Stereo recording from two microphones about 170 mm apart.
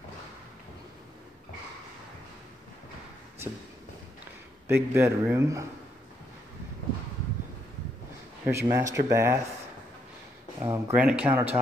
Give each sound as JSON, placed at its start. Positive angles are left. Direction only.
{"t": 4.6, "sound": "speech", "side_deg": -15}
{"t": 8.6, "sound": "speech", "side_deg": -20}
{"t": 10.6, "sound": "speech", "side_deg": -15}